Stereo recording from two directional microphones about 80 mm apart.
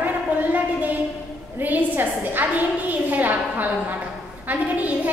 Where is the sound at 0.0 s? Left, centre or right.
Right.